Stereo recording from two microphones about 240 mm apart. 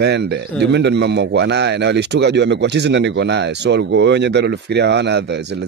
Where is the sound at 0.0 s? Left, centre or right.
Right.